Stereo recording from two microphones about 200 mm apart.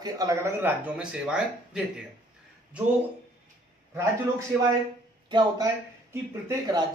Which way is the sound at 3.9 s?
15° right (ahead or behind).